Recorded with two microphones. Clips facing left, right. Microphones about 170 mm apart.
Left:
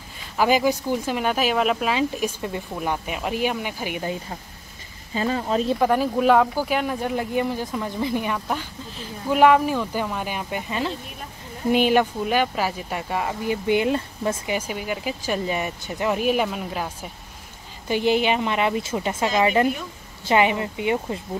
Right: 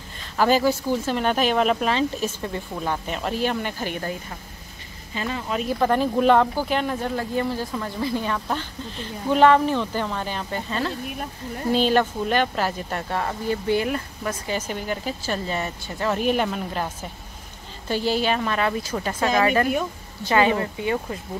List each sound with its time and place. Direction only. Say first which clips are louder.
0.4 s speech: even; 15° left (ahead or behind)
5.1 s speech: left 4 dB; 35° left (ahead or behind)
5.8 s speech: even; 10° left (ahead or behind); by 14.3 s 25° left (ahead or behind)
14.4 s speech: left 1 dB; 10° left (ahead or behind)
16.2 s speech: even; 5° left (ahead or behind)
17.8 s a woman's voice: left 2 dB; 15° left (ahead or behind)